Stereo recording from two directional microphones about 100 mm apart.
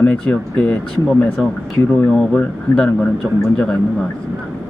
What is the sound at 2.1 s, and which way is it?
Speech, 5° left (ahead or behind).